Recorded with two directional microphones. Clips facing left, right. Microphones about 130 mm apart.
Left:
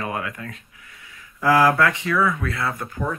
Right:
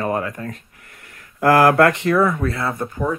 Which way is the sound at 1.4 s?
60° right (ahead or behind).